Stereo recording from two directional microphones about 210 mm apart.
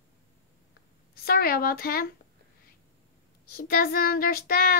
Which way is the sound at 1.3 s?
45° left (ahead or behind).